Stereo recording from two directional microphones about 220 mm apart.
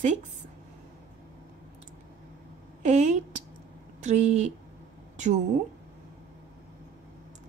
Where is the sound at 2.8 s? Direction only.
30° right (ahead or behind).